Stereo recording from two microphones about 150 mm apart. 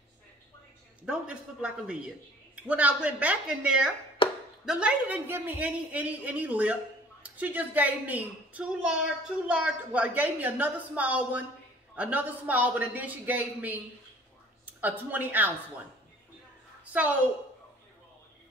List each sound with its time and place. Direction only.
1.0 s a man's voice: 5° right (ahead or behind)
4.2 s a sound: 35° left (ahead or behind)
4.6 s a man's voice: 5° right (ahead or behind)
14.8 s a man's voice: 10° right (ahead or behind)